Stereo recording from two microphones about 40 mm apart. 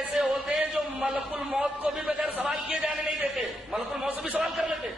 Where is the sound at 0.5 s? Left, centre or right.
Right.